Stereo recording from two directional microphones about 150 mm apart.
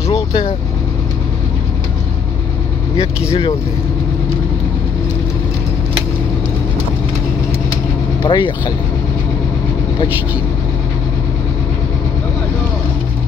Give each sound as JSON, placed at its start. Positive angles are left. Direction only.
{"t": 0.1, "sound": "speech", "side_deg": 35}
{"t": 8.2, "sound": "speech", "side_deg": 30}